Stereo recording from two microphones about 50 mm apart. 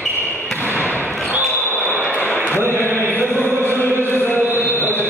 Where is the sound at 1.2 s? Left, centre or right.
Right.